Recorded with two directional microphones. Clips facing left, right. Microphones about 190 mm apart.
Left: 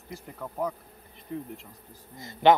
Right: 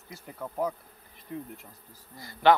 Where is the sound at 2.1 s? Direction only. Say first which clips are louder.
Left 2 dB; 20° left (ahead or behind).